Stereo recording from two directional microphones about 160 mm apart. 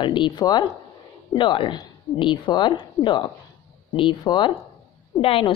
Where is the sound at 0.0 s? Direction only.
30° left (ahead or behind).